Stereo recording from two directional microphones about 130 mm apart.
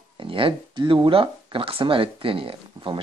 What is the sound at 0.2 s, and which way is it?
Speech, 40° right (ahead or behind).